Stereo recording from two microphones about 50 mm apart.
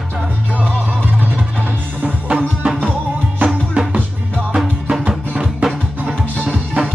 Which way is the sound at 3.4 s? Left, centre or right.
Right.